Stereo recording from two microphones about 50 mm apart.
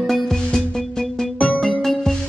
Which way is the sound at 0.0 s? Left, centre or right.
Centre.